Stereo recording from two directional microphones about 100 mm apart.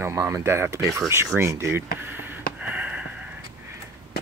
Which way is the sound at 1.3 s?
25° right (ahead or behind).